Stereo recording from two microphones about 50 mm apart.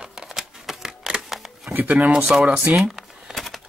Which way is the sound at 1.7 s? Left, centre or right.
Right.